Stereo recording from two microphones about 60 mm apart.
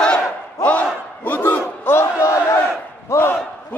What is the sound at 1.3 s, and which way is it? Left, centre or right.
Battle cry, left.